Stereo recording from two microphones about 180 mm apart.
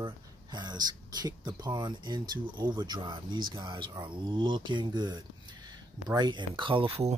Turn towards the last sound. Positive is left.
turn(degrees=-30)  # may be behind; listen again after turning